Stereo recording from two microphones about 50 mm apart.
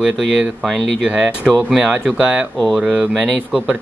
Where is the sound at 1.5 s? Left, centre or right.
Centre.